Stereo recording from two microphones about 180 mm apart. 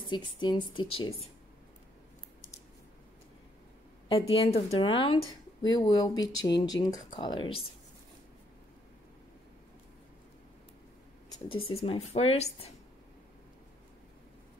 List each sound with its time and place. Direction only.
0.1 s speech: 25° left (ahead or behind)
4.3 s speech: 35° left (ahead or behind)
11.2 s speech: 25° left (ahead or behind)